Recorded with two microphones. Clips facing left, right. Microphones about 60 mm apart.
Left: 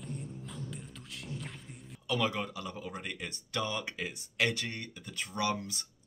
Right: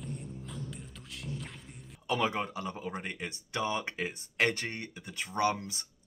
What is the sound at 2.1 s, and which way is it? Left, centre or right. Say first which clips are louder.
Speech: right 2 dB; right.